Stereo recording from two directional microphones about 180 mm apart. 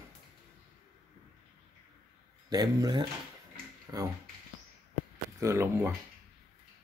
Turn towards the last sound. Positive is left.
turn(degrees=-15)  # may be behind; listen again after turning